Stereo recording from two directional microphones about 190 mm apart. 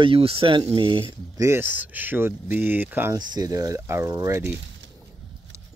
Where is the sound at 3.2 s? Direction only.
20° right (ahead or behind).